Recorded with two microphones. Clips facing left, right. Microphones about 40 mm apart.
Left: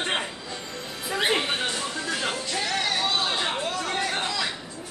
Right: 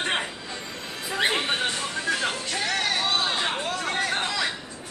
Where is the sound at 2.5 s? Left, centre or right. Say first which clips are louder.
Even; right.